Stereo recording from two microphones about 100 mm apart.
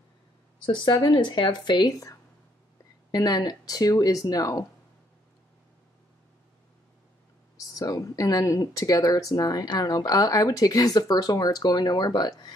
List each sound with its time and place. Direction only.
0.7 s speech: 50° left (ahead or behind)
3.1 s speech: 40° left (ahead or behind)
7.7 s speech: 35° left (ahead or behind)